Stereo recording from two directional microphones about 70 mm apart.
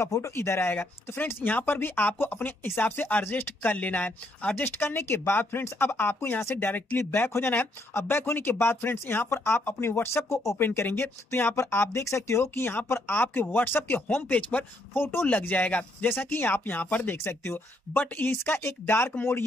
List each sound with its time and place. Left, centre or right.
0.4 s speech: left